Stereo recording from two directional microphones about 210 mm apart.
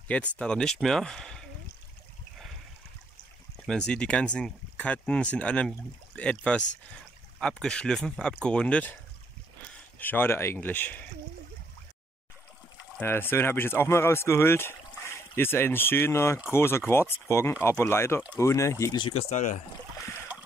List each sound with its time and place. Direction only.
0.1 s speech: 5° left (ahead or behind)
3.6 s speech: 5° left (ahead or behind)
9.9 s speech: 10° left (ahead or behind)
13.0 s speech: 10° left (ahead or behind); by 19.6 s 35° left (ahead or behind)